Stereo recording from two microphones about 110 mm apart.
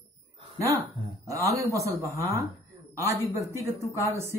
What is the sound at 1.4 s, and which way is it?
Speech, 30° right (ahead or behind).